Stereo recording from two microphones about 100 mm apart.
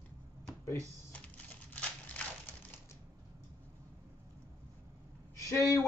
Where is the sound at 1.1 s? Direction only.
15° left (ahead or behind).